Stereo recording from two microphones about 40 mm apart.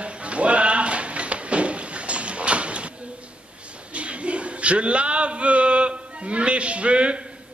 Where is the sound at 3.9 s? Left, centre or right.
Right.